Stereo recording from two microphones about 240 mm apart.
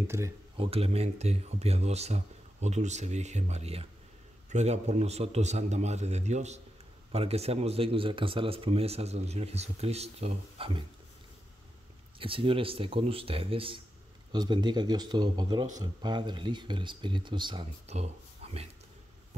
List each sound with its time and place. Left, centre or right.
0.0 s speech: centre
0.6 s speech: right
12.2 s speech: right